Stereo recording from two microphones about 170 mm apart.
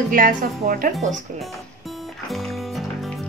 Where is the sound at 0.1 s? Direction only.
55° right (ahead or behind).